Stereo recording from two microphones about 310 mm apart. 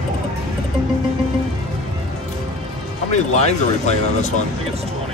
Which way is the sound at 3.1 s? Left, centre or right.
Left.